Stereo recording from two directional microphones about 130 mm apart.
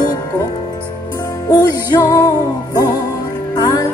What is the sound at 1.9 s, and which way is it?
Music, 30° left (ahead or behind).